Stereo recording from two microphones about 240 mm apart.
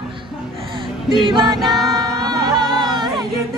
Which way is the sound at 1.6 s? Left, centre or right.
Centre.